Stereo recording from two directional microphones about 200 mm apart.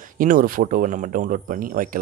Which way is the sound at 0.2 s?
40° right (ahead or behind).